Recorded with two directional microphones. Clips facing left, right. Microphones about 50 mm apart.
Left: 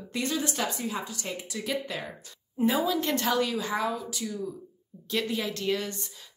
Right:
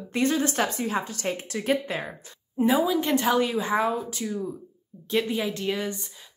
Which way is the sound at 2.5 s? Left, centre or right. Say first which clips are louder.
Right 4 dB; centre.